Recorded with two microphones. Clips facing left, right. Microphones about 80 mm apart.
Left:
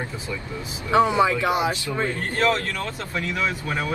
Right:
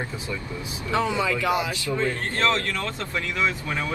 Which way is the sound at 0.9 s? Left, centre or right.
Left.